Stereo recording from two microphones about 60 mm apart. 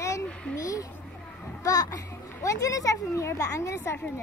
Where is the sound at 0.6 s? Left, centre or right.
Left.